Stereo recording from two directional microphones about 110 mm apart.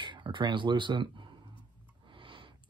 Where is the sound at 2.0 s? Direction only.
50° right (ahead or behind).